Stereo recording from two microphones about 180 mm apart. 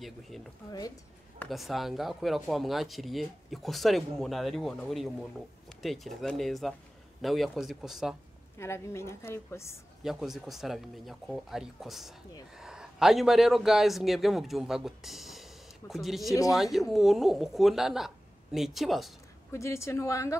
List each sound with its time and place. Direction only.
0.7 s speech: 20° left (ahead or behind)
1.5 s speech: centre (ahead or behind)
8.5 s a woman's voice: 15° left (ahead or behind)
10.0 s a man's voice: centre (ahead or behind)
19.5 s a woman's voice: 15° left (ahead or behind)